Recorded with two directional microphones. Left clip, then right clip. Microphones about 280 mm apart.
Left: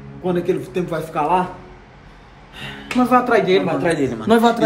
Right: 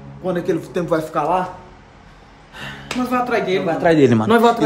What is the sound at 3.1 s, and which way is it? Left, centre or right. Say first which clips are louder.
Speech: left 4 dB; centre.